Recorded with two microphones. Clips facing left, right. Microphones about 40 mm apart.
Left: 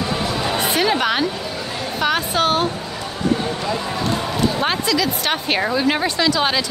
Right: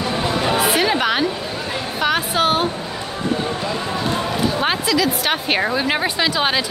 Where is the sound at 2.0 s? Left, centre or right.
Centre.